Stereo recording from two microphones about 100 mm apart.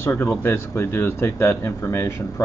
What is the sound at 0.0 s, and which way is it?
Speech, 25° left (ahead or behind).